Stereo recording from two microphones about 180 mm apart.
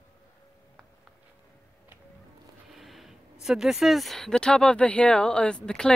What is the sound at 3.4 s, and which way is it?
Speech, centre (ahead or behind).